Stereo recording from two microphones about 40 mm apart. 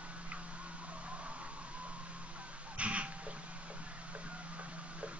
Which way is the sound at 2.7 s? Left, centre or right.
Right.